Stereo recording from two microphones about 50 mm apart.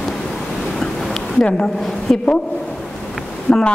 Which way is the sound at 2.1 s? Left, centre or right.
Centre.